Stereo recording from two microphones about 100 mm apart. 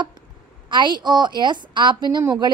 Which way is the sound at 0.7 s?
50° right (ahead or behind).